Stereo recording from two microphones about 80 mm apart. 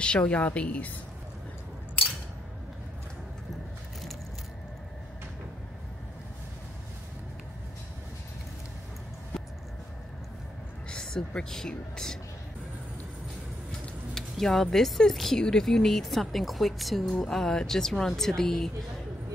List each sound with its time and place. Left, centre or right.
0.0 s a woman's voice: centre
10.9 s speech: centre
13.7 s speech: centre